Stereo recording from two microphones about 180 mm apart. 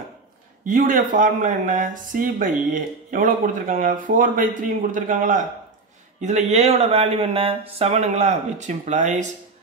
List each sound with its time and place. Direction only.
0.7 s speech: 50° right (ahead or behind)